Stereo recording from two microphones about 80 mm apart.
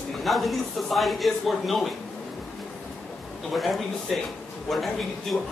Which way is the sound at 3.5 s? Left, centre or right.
Centre.